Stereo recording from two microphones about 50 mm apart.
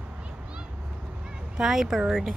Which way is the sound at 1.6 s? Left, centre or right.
Centre.